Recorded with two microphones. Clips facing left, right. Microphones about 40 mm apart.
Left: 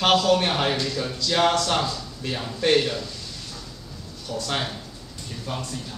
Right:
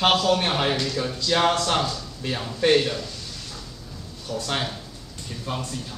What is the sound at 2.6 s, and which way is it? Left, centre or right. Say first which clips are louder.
Speech: right 1 dB; centre.